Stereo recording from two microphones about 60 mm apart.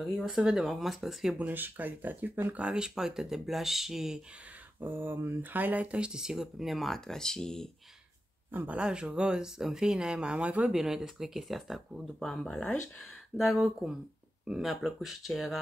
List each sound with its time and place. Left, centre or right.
0.0 s speech: centre
1.5 s speech: right
2.7 s speech: centre
4.7 s speech: right; by 7.7 s centre
8.6 s speech: centre
10.7 s speech: centre
12.2 s speech: centre
13.5 s speech: centre